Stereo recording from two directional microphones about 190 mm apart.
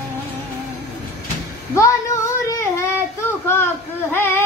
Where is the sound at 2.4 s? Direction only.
15° left (ahead or behind).